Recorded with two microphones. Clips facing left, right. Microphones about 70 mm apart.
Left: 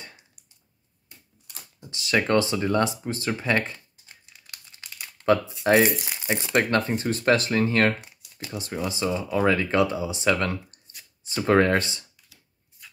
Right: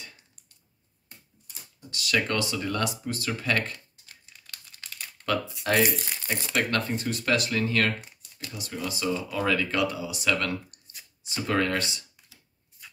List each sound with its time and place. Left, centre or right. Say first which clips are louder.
1.8 s speech: left 3 dB; left
4.7 s crumpling: even; centre
5.2 s speech: left 7 dB; left
5.9 s speech: left 4 dB; centre
7.0 s speech: left 5 dB; left